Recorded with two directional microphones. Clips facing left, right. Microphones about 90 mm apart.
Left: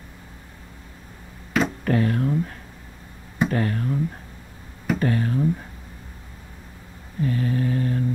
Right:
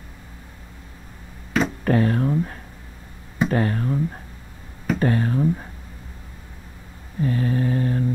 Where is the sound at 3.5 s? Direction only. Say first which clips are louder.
Right 5 dB; 30° right (ahead or behind).